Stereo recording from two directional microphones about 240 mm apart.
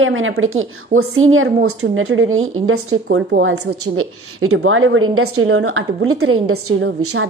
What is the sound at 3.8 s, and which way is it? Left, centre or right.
A woman's voice, right.